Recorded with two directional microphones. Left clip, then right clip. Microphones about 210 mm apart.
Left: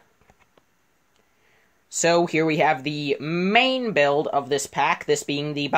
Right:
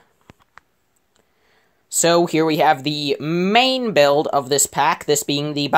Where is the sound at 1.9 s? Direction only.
25° right (ahead or behind).